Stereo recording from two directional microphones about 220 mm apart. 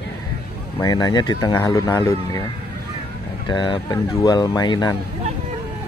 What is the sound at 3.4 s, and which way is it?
Speech, 20° left (ahead or behind).